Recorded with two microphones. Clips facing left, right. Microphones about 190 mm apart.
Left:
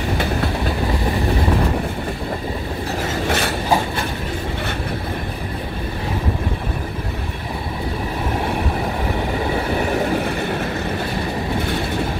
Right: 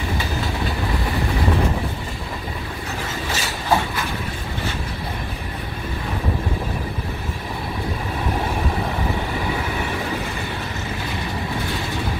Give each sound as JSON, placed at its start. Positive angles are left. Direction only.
{"t": 3.3, "sound": "train", "side_deg": 60}